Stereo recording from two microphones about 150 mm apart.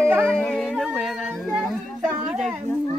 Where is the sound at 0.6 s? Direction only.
5° right (ahead or behind).